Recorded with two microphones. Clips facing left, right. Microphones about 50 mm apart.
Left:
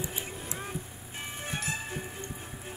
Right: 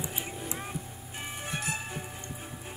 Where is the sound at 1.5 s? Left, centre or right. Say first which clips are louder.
Even; centre.